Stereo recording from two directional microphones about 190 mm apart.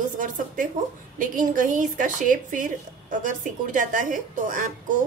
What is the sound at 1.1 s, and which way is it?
A woman's voice, 45° right (ahead or behind).